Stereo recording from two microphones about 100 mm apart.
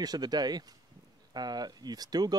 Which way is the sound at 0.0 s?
40° right (ahead or behind).